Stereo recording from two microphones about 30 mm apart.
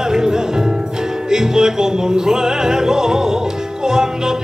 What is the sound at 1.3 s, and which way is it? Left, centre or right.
Opera, right.